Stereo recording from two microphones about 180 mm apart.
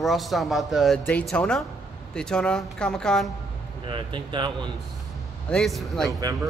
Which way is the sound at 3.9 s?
25° right (ahead or behind).